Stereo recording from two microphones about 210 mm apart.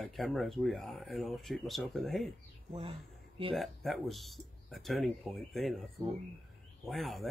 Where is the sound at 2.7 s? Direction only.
25° right (ahead or behind).